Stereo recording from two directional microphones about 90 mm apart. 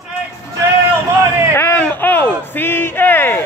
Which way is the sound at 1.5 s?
25° left (ahead or behind).